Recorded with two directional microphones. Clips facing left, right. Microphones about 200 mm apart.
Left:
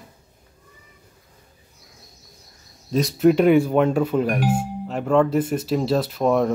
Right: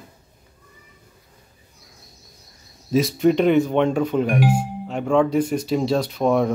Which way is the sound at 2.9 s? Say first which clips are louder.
Even; centre (ahead or behind).